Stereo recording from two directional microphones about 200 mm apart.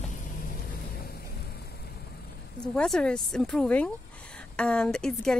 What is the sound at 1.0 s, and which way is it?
Vehicle, 50° left (ahead or behind).